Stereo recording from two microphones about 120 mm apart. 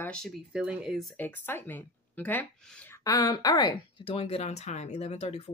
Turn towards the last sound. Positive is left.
turn(degrees=65)  # may be behind; listen again after turning